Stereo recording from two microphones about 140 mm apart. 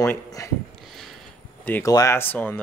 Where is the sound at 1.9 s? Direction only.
25° left (ahead or behind).